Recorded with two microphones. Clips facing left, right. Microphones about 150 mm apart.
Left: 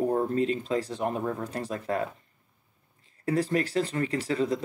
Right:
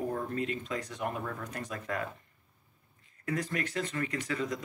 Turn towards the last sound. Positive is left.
turn(degrees=30)  # may be behind; listen again after turning